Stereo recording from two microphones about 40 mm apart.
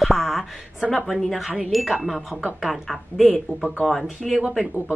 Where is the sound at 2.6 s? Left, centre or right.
Centre.